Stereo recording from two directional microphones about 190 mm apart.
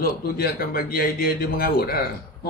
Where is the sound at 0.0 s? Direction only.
50° left (ahead or behind).